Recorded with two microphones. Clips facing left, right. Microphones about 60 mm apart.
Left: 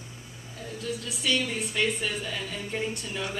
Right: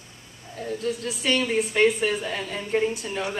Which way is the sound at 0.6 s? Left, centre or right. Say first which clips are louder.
Right 7 dB; right.